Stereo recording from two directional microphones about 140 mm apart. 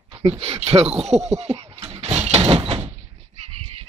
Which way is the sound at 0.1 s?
45° right (ahead or behind).